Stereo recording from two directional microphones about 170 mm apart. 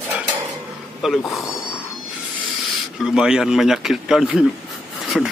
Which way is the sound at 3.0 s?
5° right (ahead or behind).